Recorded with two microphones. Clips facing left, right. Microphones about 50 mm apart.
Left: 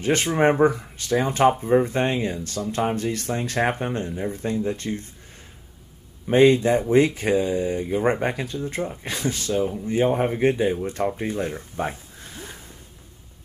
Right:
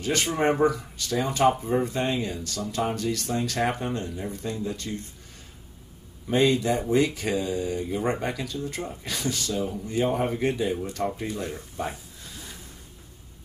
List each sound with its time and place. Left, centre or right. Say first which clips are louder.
0.0 s speech: left 5 dB; left
6.2 s speech: left 6 dB; left